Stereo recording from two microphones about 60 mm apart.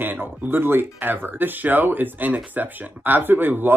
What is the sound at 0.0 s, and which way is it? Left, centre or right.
Speech, right.